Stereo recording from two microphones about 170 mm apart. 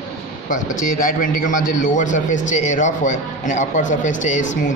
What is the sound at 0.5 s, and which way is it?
A man's voice, 50° left (ahead or behind).